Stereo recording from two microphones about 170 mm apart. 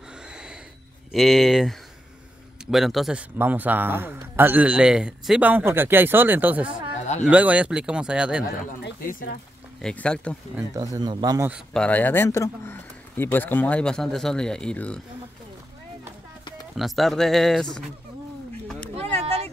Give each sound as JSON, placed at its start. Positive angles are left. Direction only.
{"t": 0.3, "sound": "a sound", "side_deg": -5}
{"t": 1.1, "sound": "a man's voice", "side_deg": 0}
{"t": 9.8, "sound": "speech", "side_deg": 5}
{"t": 10.7, "sound": "speech", "side_deg": -20}
{"t": 11.7, "sound": "speech", "side_deg": 10}
{"t": 16.7, "sound": "speech", "side_deg": 0}
{"t": 19.1, "sound": "a sound", "side_deg": -40}